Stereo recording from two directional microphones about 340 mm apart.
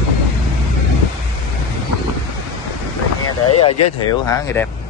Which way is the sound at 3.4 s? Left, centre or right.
Left.